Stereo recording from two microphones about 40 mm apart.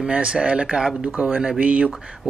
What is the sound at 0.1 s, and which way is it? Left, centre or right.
A man's voice, right.